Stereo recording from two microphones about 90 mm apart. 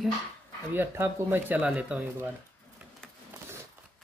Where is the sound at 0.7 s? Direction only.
25° right (ahead or behind).